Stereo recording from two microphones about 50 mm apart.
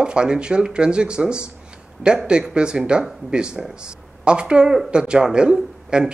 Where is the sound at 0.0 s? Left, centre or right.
Centre.